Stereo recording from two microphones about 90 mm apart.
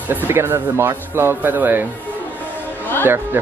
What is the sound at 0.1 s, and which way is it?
Speech, 25° right (ahead or behind).